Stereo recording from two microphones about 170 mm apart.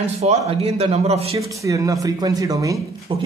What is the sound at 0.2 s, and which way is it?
Speech, 40° right (ahead or behind).